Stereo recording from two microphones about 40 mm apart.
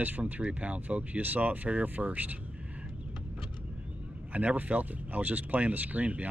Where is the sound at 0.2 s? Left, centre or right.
Right.